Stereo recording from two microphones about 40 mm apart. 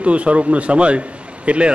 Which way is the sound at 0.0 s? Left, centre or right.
Right.